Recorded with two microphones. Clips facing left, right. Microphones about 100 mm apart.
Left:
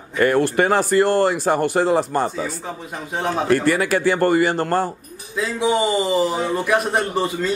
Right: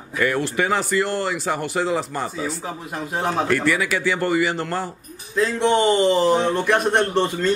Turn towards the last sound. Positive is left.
turn(degrees=5)  # may be behind; listen again after turning